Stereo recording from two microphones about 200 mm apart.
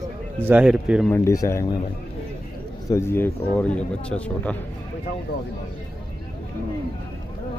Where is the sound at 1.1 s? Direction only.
15° left (ahead or behind).